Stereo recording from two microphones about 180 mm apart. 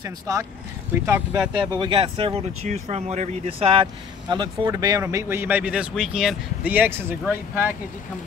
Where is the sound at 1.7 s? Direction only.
25° right (ahead or behind); by 7.8 s 10° right (ahead or behind).